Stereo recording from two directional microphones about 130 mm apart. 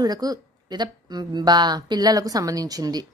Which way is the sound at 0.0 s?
30° right (ahead or behind).